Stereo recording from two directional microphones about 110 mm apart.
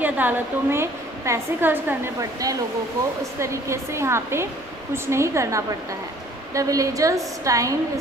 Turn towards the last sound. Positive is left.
turn(degrees=-30)  # may be behind; listen again after turning